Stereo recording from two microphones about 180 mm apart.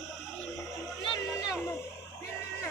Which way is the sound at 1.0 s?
25° left (ahead or behind).